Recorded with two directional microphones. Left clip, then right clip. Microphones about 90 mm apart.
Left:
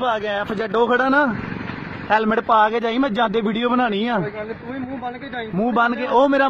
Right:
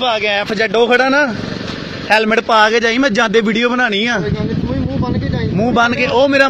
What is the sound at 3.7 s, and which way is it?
Speech, 20° left (ahead or behind).